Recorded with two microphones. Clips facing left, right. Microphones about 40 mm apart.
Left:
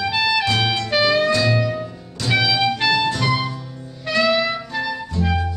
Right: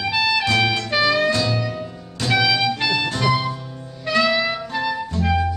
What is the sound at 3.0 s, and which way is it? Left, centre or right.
Music, right.